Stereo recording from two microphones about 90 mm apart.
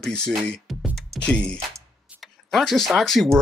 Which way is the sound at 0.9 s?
5° left (ahead or behind).